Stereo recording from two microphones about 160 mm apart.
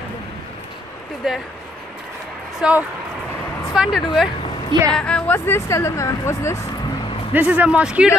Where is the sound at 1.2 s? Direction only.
Centre (ahead or behind).